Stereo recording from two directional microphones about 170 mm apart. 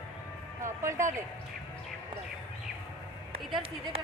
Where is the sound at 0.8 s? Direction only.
15° right (ahead or behind).